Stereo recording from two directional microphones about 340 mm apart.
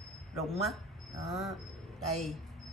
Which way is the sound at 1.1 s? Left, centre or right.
Centre.